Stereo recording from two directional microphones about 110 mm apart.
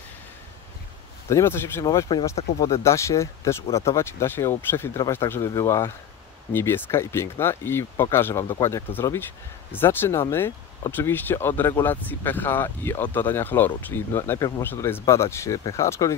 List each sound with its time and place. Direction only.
1.3 s speech: 25° left (ahead or behind)